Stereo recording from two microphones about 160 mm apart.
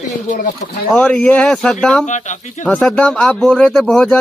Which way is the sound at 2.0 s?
50° left (ahead or behind).